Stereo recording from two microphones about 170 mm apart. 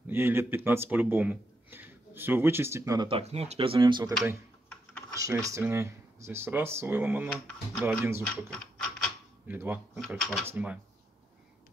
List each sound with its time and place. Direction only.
0.0 s speech: 15° right (ahead or behind)
3.1 s speech: 40° right (ahead or behind)
5.1 s speech: 20° right (ahead or behind)
8.5 s a sound: 5° left (ahead or behind)
9.5 s speech: 10° right (ahead or behind)
9.9 s speech: 5° left (ahead or behind)
10.4 s speech: 10° right (ahead or behind)